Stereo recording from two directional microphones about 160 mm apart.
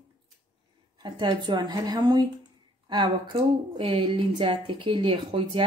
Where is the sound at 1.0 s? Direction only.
30° right (ahead or behind).